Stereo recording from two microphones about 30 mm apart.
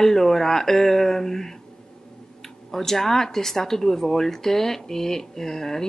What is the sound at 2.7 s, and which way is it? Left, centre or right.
Speech, centre.